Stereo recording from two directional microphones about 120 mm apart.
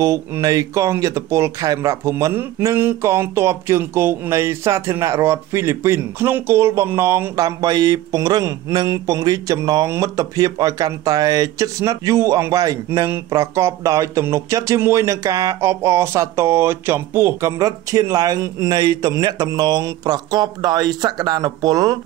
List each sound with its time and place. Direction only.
0.0 s speech: 25° right (ahead or behind)